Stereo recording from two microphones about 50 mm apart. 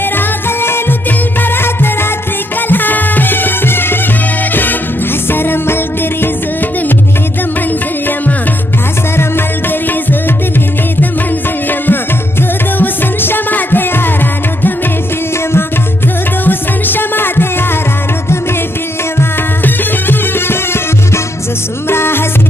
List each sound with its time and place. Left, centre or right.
0.6 s music: left
2.7 s music: left
5.3 s music: left
11.8 s music: left
16.4 s music: left
19.6 s music: left
21.8 s music: left